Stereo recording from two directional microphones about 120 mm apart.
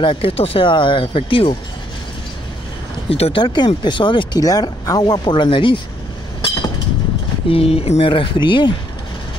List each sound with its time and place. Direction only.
0.0 s speech: 50° left (ahead or behind)
3.1 s speech: 55° left (ahead or behind)
3.4 s speech: 40° left (ahead or behind)
7.4 s speech: 55° left (ahead or behind)